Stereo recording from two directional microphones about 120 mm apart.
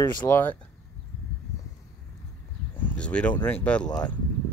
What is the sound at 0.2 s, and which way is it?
Speech, 15° left (ahead or behind).